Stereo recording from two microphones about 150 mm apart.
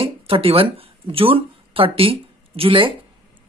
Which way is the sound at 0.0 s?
35° right (ahead or behind).